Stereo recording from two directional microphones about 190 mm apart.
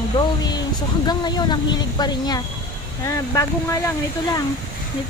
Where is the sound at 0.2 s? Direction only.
25° left (ahead or behind).